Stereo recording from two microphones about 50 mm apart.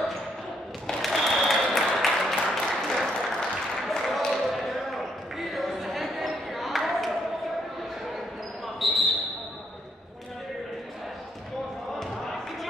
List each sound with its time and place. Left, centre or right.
0.8 s applause: centre
3.9 s basketball bounce: centre
5.5 s a sound: centre
8.7 s basketball bounce: centre